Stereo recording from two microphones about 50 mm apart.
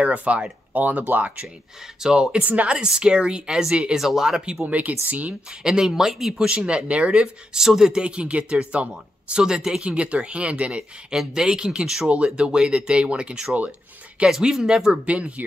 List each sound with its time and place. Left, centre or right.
0.0 s a woman's voice: right
2.0 s speech: centre
2.3 s a woman's voice: right; by 4.6 s centre
4.6 s speech: right
5.6 s speech: centre
6.5 s a woman's voice: right
7.5 s a woman's voice: centre
9.8 s a woman's voice: right
11.1 s a woman's voice: centre
15.0 s a woman's voice: right